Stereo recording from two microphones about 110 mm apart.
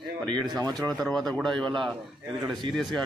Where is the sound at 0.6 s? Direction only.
35° right (ahead or behind).